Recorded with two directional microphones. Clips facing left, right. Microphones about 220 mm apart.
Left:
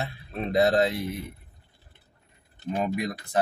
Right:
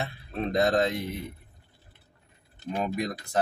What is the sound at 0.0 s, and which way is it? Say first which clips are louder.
Speech: right 1 dB; 5° left (ahead or behind).